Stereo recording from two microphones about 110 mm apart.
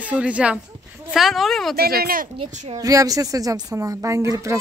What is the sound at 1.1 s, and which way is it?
Music, centre (ahead or behind).